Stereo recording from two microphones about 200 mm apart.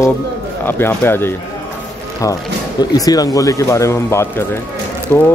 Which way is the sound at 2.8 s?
20° left (ahead or behind).